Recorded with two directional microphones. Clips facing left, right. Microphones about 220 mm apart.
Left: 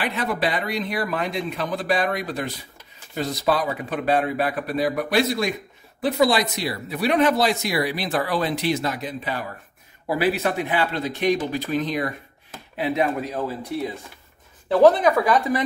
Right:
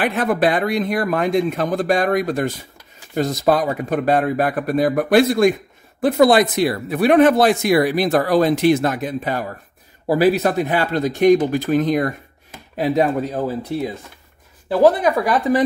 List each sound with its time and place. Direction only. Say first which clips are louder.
0.0 s speech: right 7 dB; 50° right (ahead or behind); by 13.9 s 30° right (ahead or behind)
14.7 s speech: right 1 dB; 10° right (ahead or behind)